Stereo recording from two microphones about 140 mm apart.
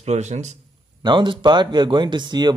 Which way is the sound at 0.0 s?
55° right (ahead or behind).